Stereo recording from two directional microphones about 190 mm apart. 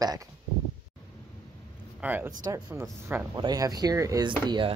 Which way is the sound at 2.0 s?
10° right (ahead or behind).